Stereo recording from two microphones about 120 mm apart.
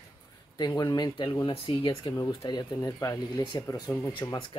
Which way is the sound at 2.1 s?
30° left (ahead or behind).